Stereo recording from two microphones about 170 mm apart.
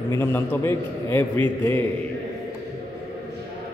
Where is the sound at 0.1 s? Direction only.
15° left (ahead or behind).